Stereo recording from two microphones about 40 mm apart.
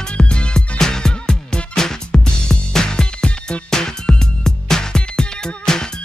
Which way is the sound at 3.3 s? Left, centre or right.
Left.